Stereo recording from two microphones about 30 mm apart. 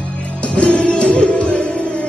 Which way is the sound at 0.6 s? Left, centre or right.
Left.